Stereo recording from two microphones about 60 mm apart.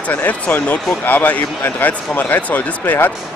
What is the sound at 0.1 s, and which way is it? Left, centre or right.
Speech, left.